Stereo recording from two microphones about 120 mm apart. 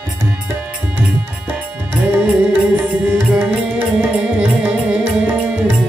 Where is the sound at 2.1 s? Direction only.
10° right (ahead or behind).